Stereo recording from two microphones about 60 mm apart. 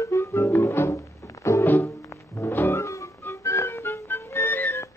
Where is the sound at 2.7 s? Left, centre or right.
Left.